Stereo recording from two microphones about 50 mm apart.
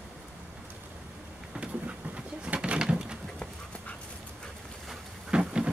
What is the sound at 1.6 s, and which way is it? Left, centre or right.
Bird, right.